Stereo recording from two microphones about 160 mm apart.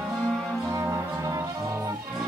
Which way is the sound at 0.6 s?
20° right (ahead or behind).